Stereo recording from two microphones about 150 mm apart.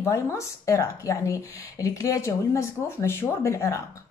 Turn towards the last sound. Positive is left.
turn(degrees=20)  # may be behind; listen again after turning